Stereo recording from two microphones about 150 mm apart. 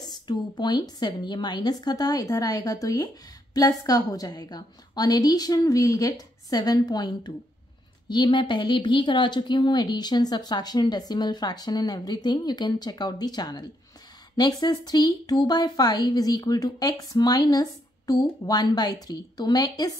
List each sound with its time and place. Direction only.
0.0 s a woman's voice: 25° left (ahead or behind)